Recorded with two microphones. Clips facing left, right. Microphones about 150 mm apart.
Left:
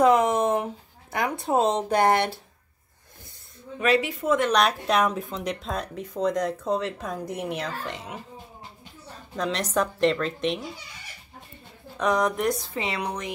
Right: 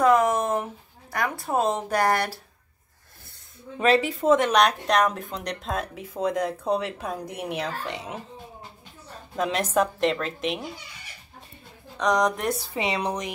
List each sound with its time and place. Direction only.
0.0 s speech: 25° left (ahead or behind)
3.8 s speech: 30° right (ahead or behind)
4.5 s speech: centre (ahead or behind)
9.4 s speech: 5° right (ahead or behind)
12.0 s speech: 5° left (ahead or behind)
12.7 s speech: 15° right (ahead or behind)